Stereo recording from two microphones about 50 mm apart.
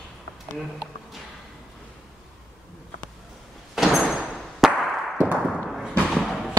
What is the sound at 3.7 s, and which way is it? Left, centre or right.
Door, centre.